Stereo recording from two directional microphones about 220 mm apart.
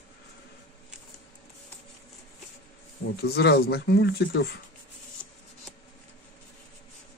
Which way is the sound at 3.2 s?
45° left (ahead or behind).